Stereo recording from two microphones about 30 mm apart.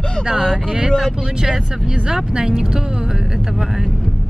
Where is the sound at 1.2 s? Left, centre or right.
Right.